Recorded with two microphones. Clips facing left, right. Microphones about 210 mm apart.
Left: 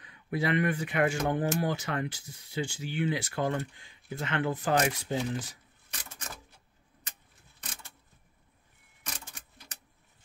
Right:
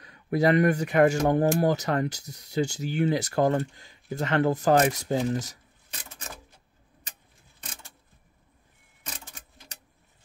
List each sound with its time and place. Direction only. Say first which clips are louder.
0.0 s speech: right 8 dB; 40° right (ahead or behind)